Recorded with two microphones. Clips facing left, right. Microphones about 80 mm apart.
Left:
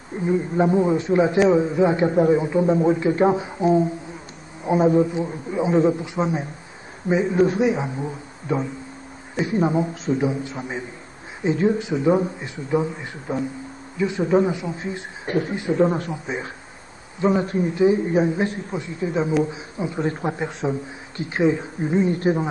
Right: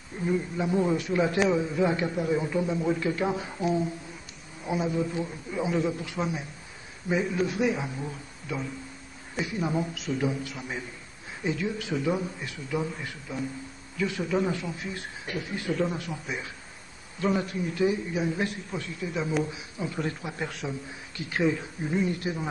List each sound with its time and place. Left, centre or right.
0.1 s a man's voice: left
2.6 s speech: left
2.9 s a man's voice: left
4.6 s speech: left
5.0 s a man's voice: left
11.8 s a man's voice: left
15.8 s speech: left
16.1 s a man's voice: left
17.5 s a man's voice: left
18.0 s speech: left
18.3 s a man's voice: left
20.1 s speech: left
20.6 s a man's voice: left